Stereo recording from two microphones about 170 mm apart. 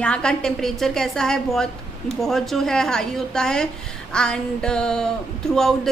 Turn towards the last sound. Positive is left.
turn(degrees=5)  # may be behind; listen again after turning